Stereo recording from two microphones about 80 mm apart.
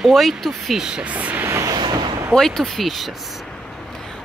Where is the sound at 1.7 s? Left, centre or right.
Right.